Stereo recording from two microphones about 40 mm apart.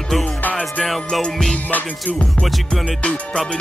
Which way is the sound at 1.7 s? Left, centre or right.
Left.